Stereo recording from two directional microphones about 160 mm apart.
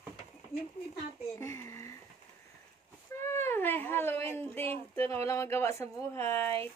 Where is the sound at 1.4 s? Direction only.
15° left (ahead or behind).